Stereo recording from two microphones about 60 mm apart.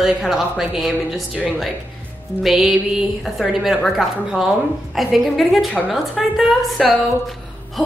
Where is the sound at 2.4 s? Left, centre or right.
Centre.